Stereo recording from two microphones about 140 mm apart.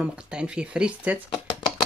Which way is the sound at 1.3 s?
35° left (ahead or behind).